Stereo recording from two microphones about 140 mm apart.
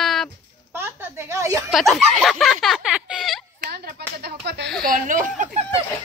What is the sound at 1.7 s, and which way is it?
Speech, centre (ahead or behind).